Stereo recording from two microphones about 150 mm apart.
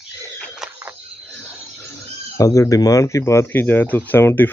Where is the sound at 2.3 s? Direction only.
20° left (ahead or behind).